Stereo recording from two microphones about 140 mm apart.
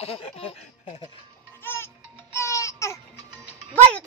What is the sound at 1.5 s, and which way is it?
Music, 15° left (ahead or behind).